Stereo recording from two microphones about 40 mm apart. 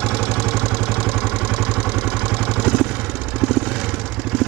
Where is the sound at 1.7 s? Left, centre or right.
Centre.